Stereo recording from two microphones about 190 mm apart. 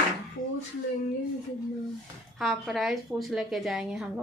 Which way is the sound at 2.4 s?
Centre (ahead or behind).